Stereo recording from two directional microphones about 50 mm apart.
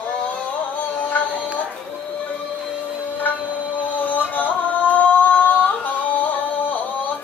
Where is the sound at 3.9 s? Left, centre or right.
Left.